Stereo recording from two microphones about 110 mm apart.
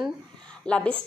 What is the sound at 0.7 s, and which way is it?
Speech, 10° left (ahead or behind).